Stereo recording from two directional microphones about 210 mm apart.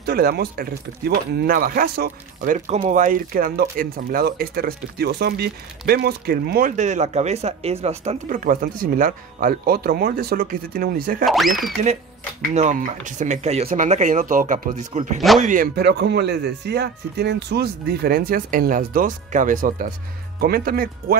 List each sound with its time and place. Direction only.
0.0 s speech: 50° right (ahead or behind)
11.2 s speech: centre (ahead or behind)
12.5 s speech: 35° right (ahead or behind)
15.1 s speech: centre (ahead or behind)
15.4 s speech: 40° right (ahead or behind)